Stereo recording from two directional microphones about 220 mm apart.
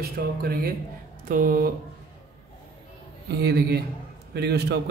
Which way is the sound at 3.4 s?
50° right (ahead or behind).